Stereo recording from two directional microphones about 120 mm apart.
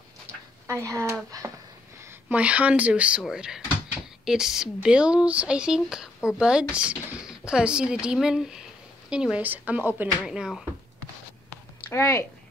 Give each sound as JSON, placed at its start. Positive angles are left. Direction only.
{"t": 0.7, "sound": "speech", "side_deg": -25}
{"t": 2.2, "sound": "speech", "side_deg": -10}
{"t": 11.9, "sound": "speech", "side_deg": 25}